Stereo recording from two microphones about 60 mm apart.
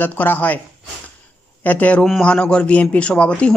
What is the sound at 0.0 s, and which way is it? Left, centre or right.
Speech, left.